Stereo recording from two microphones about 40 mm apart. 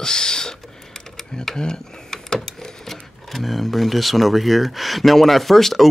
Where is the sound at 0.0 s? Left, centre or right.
Centre.